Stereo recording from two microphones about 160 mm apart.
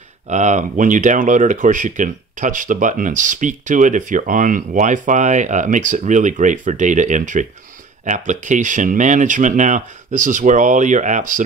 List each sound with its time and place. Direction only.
0.3 s speech: 50° right (ahead or behind)